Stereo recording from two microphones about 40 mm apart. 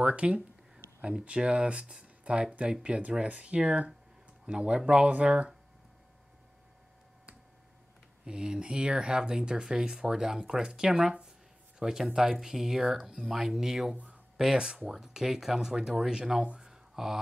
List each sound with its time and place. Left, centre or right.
0.0 s speech: right
8.3 s speech: right
16.5 s a sound: centre